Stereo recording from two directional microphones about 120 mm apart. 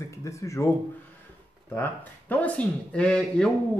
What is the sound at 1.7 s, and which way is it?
Speech, 15° left (ahead or behind).